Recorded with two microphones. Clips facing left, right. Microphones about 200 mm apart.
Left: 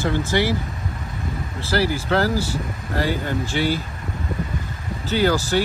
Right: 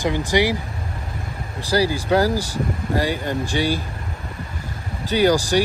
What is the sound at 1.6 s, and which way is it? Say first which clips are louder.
Speech: right 2 dB; 15° right (ahead or behind).